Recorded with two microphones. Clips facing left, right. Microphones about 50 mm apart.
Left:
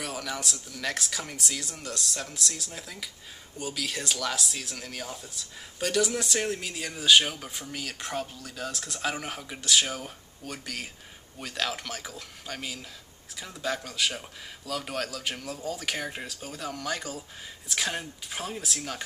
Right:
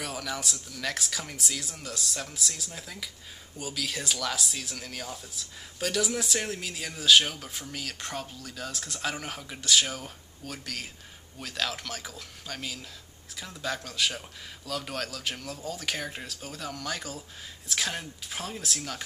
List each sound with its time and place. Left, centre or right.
0.0 s speech: centre